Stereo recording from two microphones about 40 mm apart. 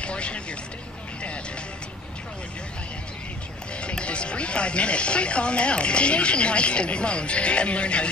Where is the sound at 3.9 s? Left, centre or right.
Left.